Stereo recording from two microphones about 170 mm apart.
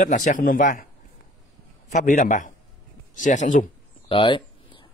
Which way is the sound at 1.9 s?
45° left (ahead or behind).